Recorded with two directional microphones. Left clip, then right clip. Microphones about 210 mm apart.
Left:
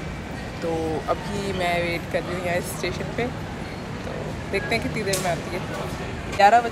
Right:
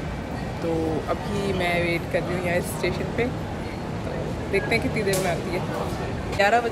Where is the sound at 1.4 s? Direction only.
5° right (ahead or behind).